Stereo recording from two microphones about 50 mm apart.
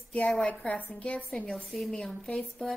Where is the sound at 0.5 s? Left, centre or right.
Left.